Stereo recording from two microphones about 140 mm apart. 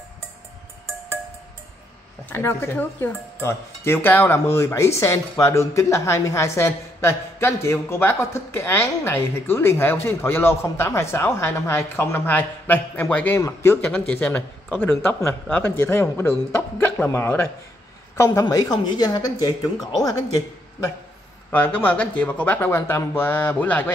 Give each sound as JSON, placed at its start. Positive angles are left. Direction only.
{"t": 2.2, "sound": "speech", "side_deg": 15}
{"t": 21.5, "sound": "speech", "side_deg": 10}